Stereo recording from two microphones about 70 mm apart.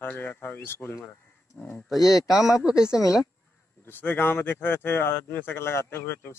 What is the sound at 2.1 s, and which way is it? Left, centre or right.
Speech, left.